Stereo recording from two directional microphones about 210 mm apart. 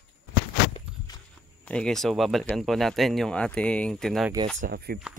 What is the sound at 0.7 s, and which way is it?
Walk, 20° left (ahead or behind).